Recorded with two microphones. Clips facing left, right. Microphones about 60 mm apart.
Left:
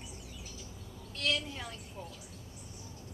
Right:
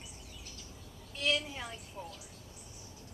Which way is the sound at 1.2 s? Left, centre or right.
Centre.